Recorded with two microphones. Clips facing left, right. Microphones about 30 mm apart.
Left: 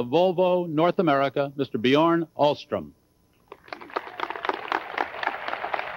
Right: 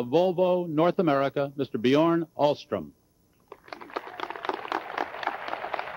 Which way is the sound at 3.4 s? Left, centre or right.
Left.